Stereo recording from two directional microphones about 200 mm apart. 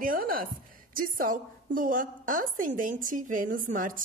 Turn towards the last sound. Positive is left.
turn(degrees=-40)  # may be behind; listen again after turning